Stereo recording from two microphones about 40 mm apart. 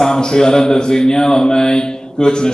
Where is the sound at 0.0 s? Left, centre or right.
Centre.